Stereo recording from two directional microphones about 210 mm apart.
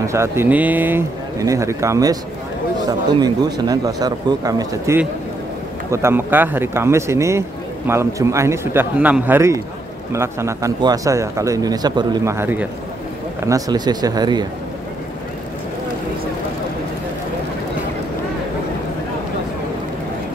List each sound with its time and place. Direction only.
0.0 s speech: 15° right (ahead or behind)
3.2 s speech: 20° right (ahead or behind)